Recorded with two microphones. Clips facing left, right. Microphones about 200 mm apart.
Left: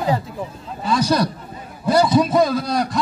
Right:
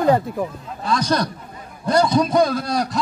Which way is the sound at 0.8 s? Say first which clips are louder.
Left 2 dB; 5° left (ahead or behind).